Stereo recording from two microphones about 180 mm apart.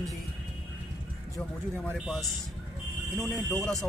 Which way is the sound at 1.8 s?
Centre (ahead or behind).